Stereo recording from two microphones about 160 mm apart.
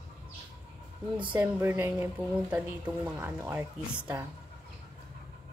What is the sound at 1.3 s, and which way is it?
A woman's voice, 10° right (ahead or behind).